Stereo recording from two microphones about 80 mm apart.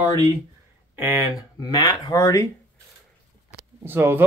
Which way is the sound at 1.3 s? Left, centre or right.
Left.